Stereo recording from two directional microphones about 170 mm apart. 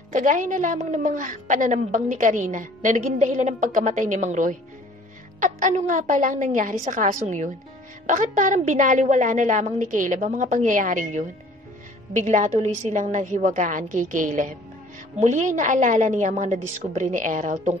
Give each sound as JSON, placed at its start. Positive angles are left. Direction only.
{"t": 0.1, "sound": "a woman's voice", "side_deg": -50}